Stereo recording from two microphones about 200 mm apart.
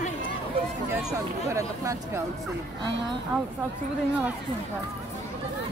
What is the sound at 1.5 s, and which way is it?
Speech, 15° right (ahead or behind).